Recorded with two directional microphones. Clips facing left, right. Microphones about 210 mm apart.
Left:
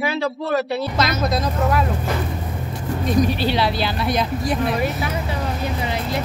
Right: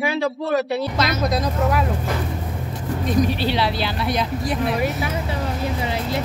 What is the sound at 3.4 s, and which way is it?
Speech, 45° left (ahead or behind).